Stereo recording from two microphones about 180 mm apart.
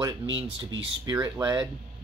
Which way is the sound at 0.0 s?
30° right (ahead or behind).